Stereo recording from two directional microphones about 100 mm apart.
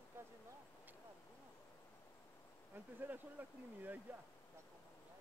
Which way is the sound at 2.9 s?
20° right (ahead or behind).